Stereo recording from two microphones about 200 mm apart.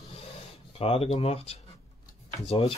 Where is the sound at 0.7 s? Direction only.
30° left (ahead or behind).